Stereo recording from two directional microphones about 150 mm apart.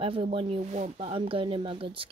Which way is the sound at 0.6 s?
50° right (ahead or behind).